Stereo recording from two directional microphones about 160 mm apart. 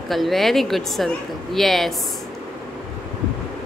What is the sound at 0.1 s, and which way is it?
Speech, centre (ahead or behind).